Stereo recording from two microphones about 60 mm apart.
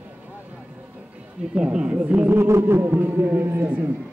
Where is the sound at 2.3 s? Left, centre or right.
Right.